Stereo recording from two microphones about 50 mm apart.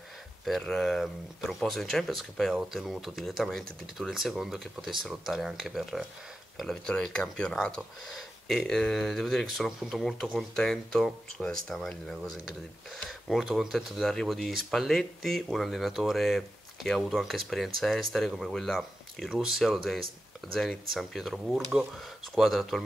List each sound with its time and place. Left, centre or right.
0.5 s speech: centre
2.5 s speech: centre
6.6 s speech: centre
13.3 s speech: centre
19.2 s speech: centre